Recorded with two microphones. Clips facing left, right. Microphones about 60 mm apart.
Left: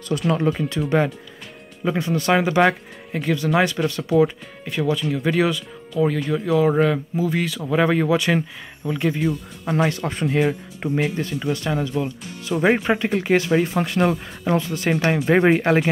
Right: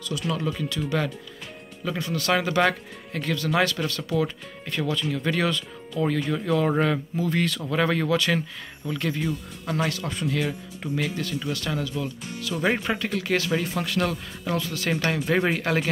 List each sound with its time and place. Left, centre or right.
0.3 s speech: left
2.3 s speech: centre
15.0 s speech: centre
15.2 s speech: left